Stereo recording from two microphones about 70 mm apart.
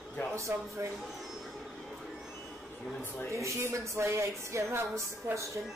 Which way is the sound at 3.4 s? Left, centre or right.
Right.